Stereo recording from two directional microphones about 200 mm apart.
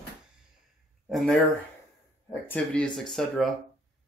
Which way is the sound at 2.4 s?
5° left (ahead or behind).